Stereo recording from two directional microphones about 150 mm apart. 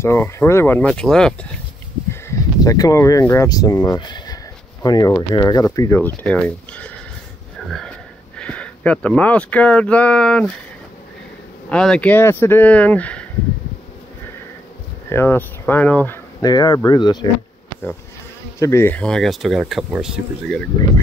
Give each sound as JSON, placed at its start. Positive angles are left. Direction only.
{"t": 0.0, "sound": "speech", "side_deg": 15}
{"t": 2.0, "sound": "speech", "side_deg": 20}
{"t": 11.7, "sound": "speech", "side_deg": 5}
{"t": 15.0, "sound": "speech", "side_deg": 15}
{"t": 16.3, "sound": "speech", "side_deg": 25}
{"t": 18.6, "sound": "speech", "side_deg": 20}